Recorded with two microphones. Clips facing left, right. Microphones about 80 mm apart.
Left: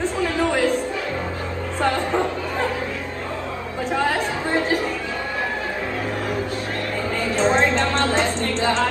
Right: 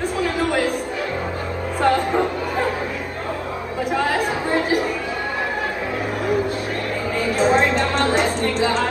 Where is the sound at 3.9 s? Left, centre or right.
Centre.